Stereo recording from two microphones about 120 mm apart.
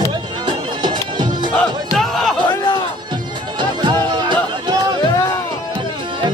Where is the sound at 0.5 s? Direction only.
40° right (ahead or behind).